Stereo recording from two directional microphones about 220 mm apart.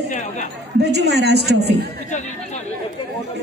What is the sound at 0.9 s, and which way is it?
Speech, 50° right (ahead or behind).